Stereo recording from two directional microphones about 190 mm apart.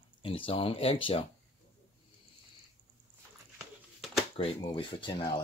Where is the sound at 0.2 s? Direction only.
30° left (ahead or behind).